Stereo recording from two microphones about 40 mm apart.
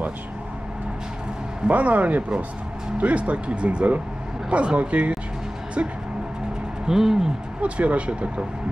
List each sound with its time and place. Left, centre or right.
1.7 s speech: right
6.9 s speech: centre
7.6 s speech: right